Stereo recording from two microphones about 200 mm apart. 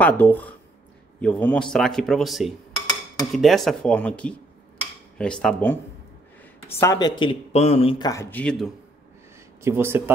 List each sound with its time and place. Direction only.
0.0 s speech: 10° left (ahead or behind)
7.5 s speech: 30° left (ahead or behind); by 8.6 s 5° left (ahead or behind)
9.6 s speech: 10° right (ahead or behind)